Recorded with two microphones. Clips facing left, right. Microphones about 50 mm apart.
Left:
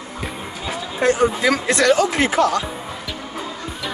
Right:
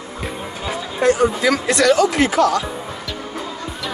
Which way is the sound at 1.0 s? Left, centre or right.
Left.